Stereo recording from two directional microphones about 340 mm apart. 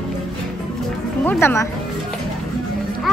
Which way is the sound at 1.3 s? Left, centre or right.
Centre.